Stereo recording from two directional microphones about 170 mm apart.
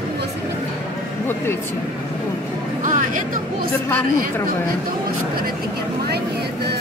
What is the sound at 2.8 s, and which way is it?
Speech, 50° right (ahead or behind).